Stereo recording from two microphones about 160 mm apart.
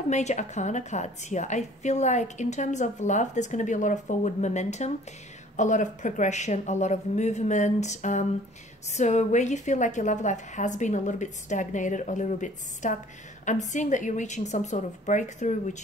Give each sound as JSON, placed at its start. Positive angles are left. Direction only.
{"t": 0.1, "sound": "a woman's voice", "side_deg": 45}